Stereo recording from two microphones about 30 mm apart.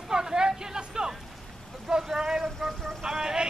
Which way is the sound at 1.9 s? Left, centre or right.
Right.